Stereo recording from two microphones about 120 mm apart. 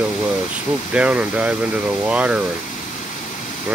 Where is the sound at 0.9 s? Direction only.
10° right (ahead or behind).